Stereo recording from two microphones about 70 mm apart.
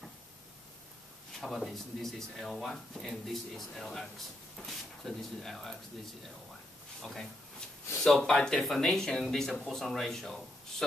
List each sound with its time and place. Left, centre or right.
1.4 s speech: centre
8.0 s speech: centre